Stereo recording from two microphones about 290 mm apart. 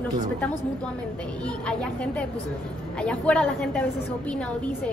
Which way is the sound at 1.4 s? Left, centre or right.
Centre.